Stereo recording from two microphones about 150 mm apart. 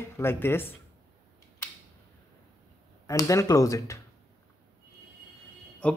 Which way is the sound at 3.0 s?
20° left (ahead or behind).